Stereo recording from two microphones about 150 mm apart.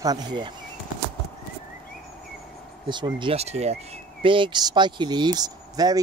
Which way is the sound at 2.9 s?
30° right (ahead or behind).